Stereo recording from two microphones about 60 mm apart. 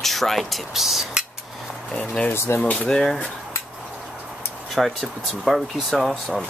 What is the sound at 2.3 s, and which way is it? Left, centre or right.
Speech, left.